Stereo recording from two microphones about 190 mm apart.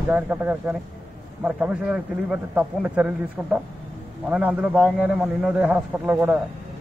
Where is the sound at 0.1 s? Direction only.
10° right (ahead or behind).